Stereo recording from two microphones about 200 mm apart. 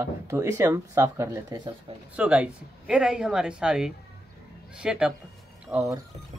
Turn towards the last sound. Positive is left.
turn(degrees=-15)  # may be behind; listen again after turning